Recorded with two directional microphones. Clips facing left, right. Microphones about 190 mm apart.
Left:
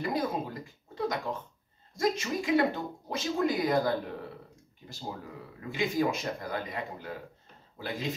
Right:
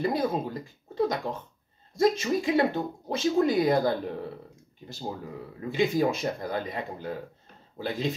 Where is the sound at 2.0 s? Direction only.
25° right (ahead or behind).